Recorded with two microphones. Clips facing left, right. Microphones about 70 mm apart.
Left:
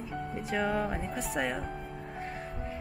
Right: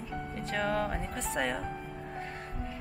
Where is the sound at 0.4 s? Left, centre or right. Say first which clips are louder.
Left 1 dB; centre.